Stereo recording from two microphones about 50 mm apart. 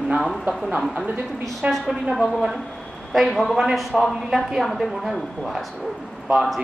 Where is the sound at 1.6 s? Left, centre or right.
Right.